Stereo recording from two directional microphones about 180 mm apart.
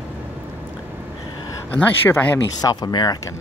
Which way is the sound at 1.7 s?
10° left (ahead or behind).